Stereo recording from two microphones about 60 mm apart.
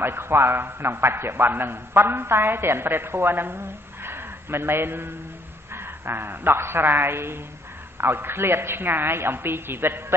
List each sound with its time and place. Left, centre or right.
0.0 s a man's voice: right